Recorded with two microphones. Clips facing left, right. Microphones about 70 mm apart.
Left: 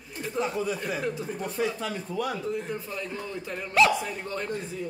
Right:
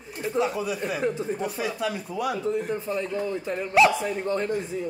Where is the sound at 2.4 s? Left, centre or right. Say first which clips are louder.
Right 5 dB; right.